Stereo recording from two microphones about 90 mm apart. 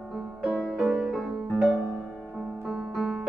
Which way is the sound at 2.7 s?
5° left (ahead or behind).